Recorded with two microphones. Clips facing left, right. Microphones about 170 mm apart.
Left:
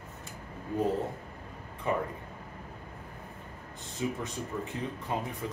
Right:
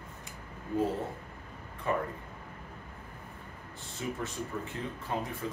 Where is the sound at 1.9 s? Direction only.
20° left (ahead or behind).